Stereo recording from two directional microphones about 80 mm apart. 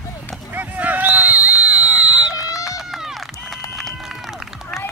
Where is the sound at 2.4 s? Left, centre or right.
Left.